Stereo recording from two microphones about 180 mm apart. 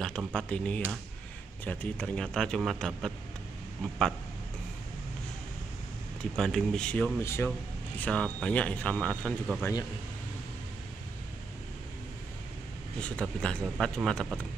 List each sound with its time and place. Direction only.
0.3 s a man's voice: 5° left (ahead or behind)
6.3 s a man's voice: 5° left (ahead or behind)
9.6 s speech: 20° left (ahead or behind)
13.0 s a man's voice: 5° left (ahead or behind)